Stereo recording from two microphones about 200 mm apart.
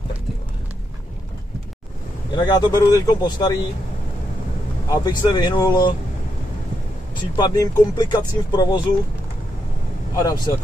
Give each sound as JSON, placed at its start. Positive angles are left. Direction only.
{"t": 2.3, "sound": "speech", "side_deg": 20}
{"t": 4.8, "sound": "speech", "side_deg": 20}
{"t": 7.2, "sound": "speech", "side_deg": 20}
{"t": 10.1, "sound": "speech", "side_deg": 20}